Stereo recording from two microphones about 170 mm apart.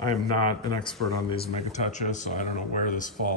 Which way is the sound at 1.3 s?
40° left (ahead or behind).